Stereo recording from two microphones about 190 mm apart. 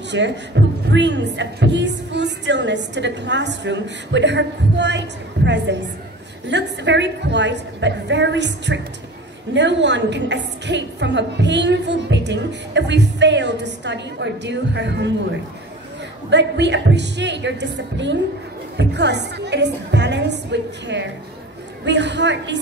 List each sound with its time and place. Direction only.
0.1 s speech: 70° right (ahead or behind)
16.3 s a woman's voice: 65° right (ahead or behind)